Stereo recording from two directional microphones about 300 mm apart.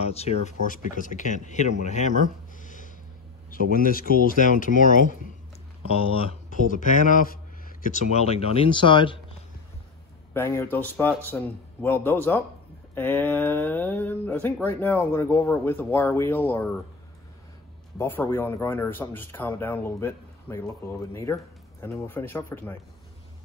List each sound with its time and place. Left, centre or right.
0.0 s speech: left
10.3 s speech: centre
17.9 s speech: centre